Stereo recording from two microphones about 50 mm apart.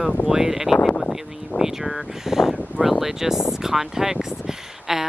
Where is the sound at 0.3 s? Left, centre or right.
Centre.